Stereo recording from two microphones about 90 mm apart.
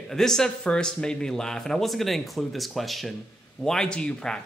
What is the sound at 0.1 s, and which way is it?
A man's voice, 5° left (ahead or behind).